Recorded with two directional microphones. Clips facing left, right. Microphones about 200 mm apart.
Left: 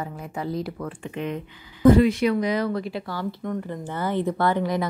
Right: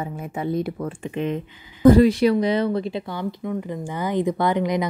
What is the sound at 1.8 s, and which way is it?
Speech, 35° right (ahead or behind).